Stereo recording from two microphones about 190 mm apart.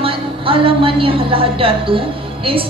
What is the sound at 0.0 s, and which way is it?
A woman's voice, 30° right (ahead or behind).